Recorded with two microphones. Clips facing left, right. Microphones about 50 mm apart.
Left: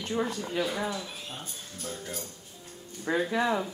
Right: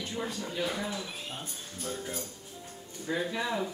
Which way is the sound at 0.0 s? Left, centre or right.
Left.